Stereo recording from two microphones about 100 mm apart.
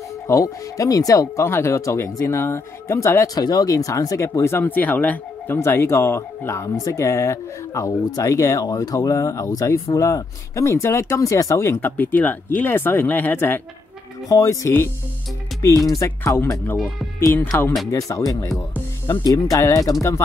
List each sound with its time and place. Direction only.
0.3 s speech: 35° left (ahead or behind)
3.4 s speech: 40° left (ahead or behind); by 13.6 s 20° left (ahead or behind)
14.3 s speech: 30° left (ahead or behind)
16.3 s speech: 25° left (ahead or behind)